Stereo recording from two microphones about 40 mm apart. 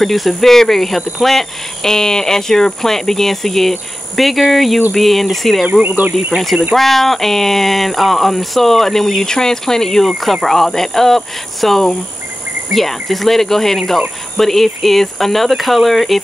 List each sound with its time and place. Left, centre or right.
0.0 s speech: centre
5.9 s speech: right
6.3 s speech: centre